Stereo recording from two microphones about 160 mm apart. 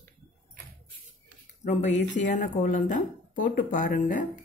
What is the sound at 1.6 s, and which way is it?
Speech, 50° left (ahead or behind).